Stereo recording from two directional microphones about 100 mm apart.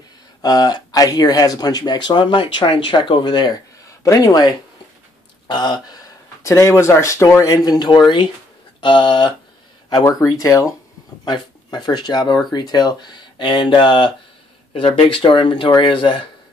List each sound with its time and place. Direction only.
0.4 s speech: 45° left (ahead or behind)
4.0 s speech: 35° left (ahead or behind); by 9.3 s 55° left (ahead or behind)
10.2 s speech: 35° left (ahead or behind)
11.2 s speech: 45° left (ahead or behind)